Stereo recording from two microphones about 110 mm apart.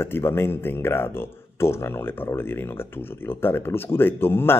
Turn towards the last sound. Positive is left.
turn(degrees=20)  # may be behind; listen again after turning